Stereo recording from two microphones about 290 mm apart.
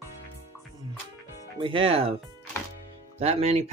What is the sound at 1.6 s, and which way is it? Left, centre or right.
Speech, centre.